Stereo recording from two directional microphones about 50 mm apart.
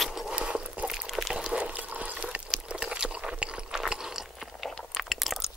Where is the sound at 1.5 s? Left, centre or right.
Right.